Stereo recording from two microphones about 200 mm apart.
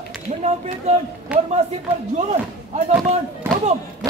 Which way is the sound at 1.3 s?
5° right (ahead or behind).